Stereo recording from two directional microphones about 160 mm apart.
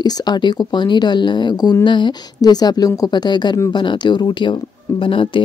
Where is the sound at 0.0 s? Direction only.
25° left (ahead or behind).